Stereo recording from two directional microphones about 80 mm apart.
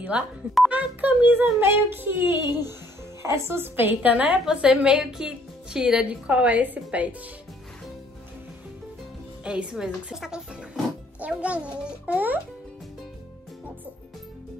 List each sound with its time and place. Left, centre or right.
0.1 s a woman's voice: centre
9.4 s a woman's voice: centre